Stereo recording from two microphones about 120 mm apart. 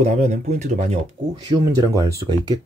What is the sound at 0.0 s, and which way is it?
Speech, 70° right (ahead or behind).